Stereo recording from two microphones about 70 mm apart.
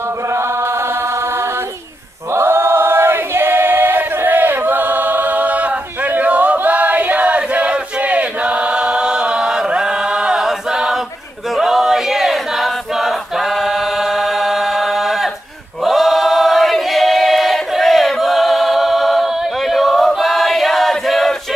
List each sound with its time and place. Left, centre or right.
2.3 s choir: right
6.1 s chant: right; by 11.0 s centre
11.5 s choir: centre
14.1 s choir: centre